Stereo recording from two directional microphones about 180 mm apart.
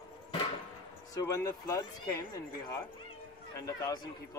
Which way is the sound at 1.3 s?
20° left (ahead or behind).